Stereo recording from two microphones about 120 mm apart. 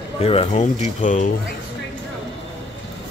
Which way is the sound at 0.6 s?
80° left.